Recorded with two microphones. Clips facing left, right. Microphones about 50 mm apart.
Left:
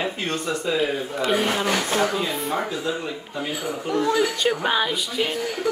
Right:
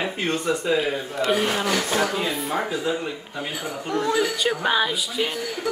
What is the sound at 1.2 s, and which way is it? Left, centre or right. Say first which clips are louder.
Speech: even; centre.